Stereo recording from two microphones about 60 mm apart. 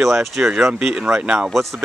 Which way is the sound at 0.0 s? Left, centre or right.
Centre.